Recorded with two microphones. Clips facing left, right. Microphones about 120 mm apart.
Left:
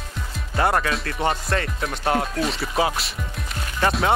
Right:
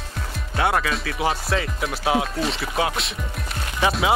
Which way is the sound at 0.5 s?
Centre (ahead or behind).